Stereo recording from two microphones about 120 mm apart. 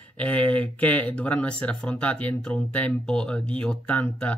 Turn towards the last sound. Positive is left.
turn(degrees=10)  # may be behind; listen again after turning